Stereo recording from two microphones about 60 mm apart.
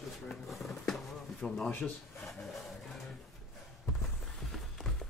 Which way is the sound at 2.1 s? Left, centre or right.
Centre.